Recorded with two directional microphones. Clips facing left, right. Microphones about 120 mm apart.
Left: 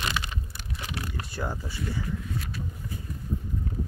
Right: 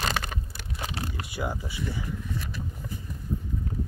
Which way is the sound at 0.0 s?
45° right (ahead or behind).